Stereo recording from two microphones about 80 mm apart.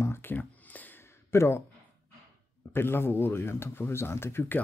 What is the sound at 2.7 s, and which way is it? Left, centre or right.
Speech, left.